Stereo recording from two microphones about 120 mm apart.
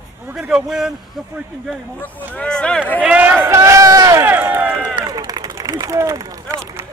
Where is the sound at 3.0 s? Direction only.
10° right (ahead or behind).